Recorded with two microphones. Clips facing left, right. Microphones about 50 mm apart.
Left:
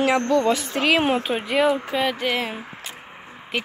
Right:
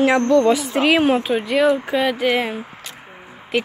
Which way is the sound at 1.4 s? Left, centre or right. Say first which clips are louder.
Right 3 dB; centre.